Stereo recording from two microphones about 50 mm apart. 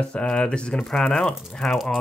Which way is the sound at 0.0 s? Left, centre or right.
Left.